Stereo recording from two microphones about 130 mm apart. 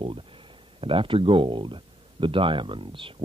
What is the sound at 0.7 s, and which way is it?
Speech, 45° right (ahead or behind).